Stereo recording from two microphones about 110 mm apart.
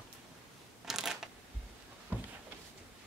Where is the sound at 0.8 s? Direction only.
5° right (ahead or behind).